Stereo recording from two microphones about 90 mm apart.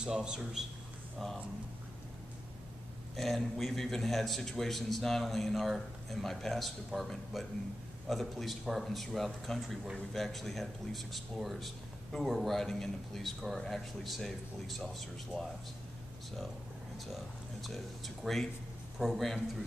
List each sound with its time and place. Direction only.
0.0 s a man's voice: 10° right (ahead or behind)
3.2 s speech: centre (ahead or behind)
17.1 s speech: centre (ahead or behind)